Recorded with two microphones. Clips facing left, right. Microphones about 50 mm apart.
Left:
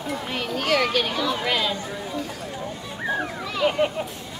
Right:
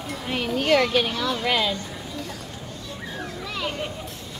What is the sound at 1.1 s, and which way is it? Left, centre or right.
Speech, centre.